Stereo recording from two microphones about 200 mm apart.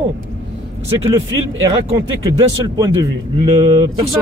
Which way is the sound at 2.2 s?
20° right (ahead or behind).